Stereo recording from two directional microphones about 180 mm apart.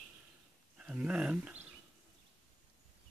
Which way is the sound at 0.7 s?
5° right (ahead or behind).